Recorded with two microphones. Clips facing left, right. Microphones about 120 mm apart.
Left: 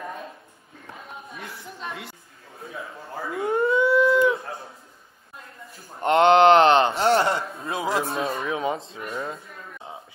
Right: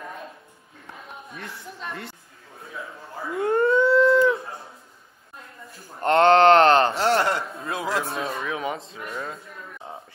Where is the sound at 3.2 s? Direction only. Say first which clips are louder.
Right 2 dB; centre (ahead or behind).